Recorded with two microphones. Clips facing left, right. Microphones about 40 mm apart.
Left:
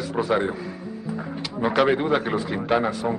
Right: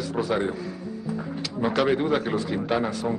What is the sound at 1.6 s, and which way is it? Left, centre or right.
Speech, centre.